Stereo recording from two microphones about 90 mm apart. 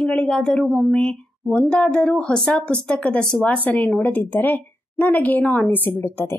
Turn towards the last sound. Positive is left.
turn(degrees=25)  # may be behind; listen again after turning